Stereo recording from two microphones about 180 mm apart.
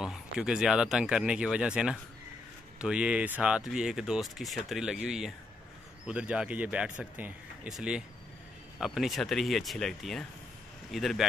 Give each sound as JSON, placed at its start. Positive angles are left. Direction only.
{"t": 0.0, "sound": "speech", "side_deg": -5}